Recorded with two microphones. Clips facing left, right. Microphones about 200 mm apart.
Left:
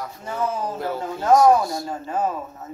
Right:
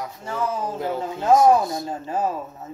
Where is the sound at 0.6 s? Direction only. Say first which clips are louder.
Right 1 dB; 15° right (ahead or behind).